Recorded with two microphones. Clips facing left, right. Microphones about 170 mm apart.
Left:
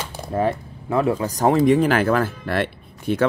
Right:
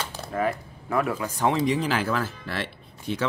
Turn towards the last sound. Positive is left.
turn(degrees=55)  # may be behind; listen again after turning